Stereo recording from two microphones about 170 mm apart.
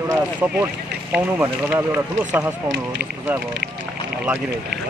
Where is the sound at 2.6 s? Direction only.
90° right.